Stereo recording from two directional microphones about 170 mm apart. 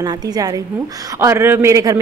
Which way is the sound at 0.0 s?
20° right (ahead or behind).